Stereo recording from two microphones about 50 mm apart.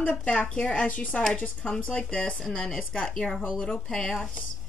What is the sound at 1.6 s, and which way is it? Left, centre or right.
Speech, left.